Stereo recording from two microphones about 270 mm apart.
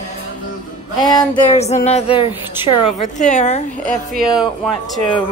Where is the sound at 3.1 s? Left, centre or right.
Left.